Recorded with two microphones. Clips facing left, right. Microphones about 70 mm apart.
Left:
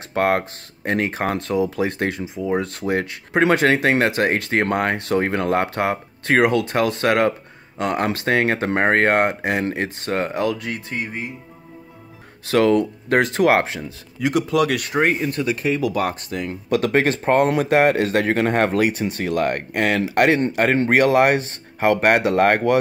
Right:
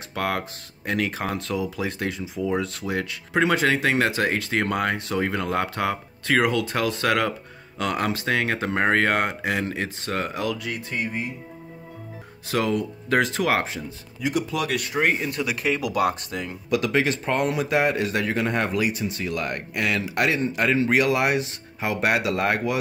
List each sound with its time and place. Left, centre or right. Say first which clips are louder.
0.1 s speech: left 8 dB; left
8.1 s speech: left 5 dB; left
12.4 s speech: left 8 dB; left
13.8 s speech: left 5 dB; left
15.0 s speech: left 4 dB; left